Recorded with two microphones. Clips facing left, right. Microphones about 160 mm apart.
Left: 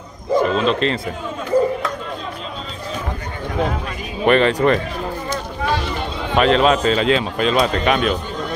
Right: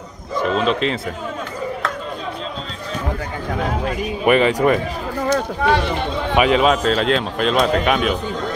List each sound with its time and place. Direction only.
0.4 s speech: centre (ahead or behind)
4.2 s speech: 10° right (ahead or behind)
5.2 s a sound: 70° right (ahead or behind)
6.3 s speech: 10° right (ahead or behind)